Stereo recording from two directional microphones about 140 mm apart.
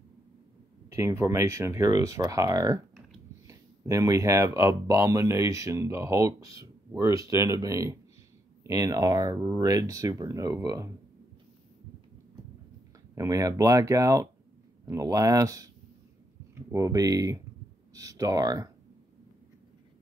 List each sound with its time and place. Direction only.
0.8 s speech: 20° right (ahead or behind)
13.1 s speech: 25° right (ahead or behind)